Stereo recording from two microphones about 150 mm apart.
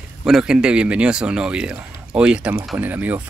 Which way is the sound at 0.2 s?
5° right (ahead or behind).